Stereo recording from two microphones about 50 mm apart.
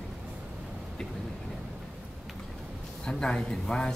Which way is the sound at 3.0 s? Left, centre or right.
Centre.